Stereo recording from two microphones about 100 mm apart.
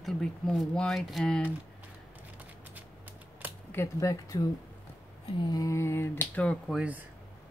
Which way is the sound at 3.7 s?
35° left (ahead or behind).